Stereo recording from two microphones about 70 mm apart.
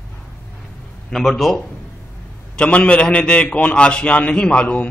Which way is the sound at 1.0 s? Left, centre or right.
Centre.